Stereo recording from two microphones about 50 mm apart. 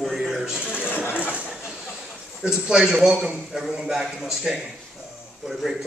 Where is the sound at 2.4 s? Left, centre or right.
Centre.